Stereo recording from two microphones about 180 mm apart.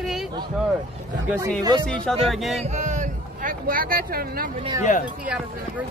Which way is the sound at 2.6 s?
40° right (ahead or behind).